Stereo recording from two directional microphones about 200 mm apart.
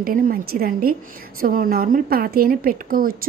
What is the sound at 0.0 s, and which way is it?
A woman's voice, 45° right (ahead or behind).